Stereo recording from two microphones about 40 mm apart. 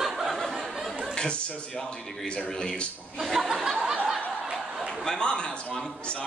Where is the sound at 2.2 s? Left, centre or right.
Left.